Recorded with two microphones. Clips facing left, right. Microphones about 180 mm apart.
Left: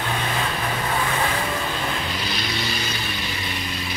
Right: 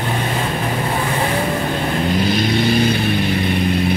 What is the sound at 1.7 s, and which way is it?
Vehicle, 50° right (ahead or behind).